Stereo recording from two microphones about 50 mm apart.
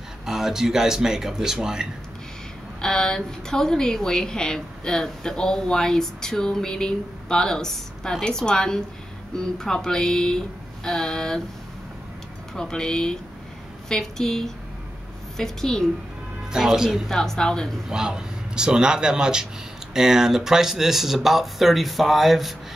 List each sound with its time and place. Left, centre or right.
0.2 s speech: centre
2.8 s a woman's voice: centre
12.5 s a woman's voice: centre
16.5 s speech: centre
17.1 s a woman's voice: centre
17.8 s speech: centre